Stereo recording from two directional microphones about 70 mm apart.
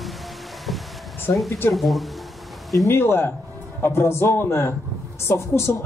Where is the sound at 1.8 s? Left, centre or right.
Centre.